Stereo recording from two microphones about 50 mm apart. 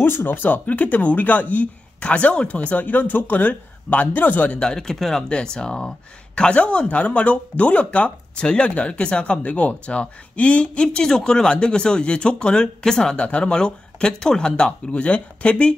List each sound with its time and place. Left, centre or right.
0.0 s speech: left
4.6 s speech: centre